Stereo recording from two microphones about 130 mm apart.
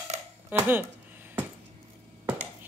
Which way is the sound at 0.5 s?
15° right (ahead or behind).